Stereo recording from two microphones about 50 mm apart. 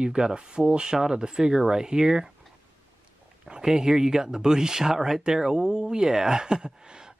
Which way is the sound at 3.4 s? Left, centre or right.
Centre.